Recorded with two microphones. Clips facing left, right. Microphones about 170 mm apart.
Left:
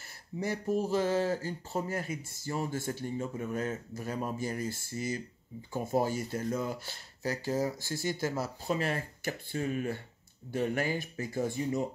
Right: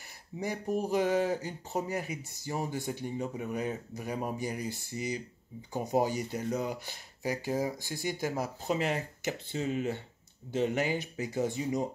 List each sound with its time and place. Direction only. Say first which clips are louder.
0.4 s speech: left 1 dB; 15° right (ahead or behind)